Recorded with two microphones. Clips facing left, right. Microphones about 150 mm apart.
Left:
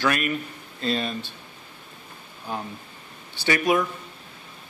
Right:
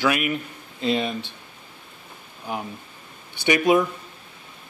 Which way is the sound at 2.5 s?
15° right (ahead or behind).